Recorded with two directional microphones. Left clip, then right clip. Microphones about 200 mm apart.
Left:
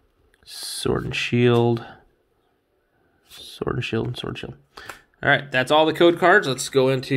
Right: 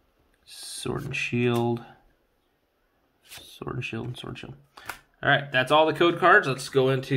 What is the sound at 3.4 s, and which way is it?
Speech, 35° left (ahead or behind).